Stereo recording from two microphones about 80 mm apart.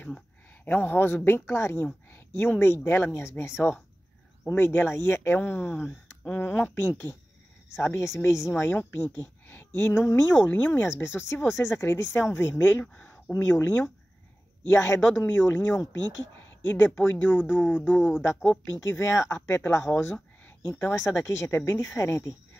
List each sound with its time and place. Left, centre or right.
0.7 s speech: left
2.0 s a sound: left
2.5 s speech: left
10.4 s speech: left
12.8 s speech: centre
13.5 s speech: left
17.7 s speech: centre
18.8 s speech: left